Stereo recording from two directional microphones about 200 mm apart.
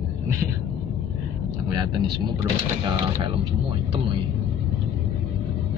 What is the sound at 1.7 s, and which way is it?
Vehicle, 20° right (ahead or behind).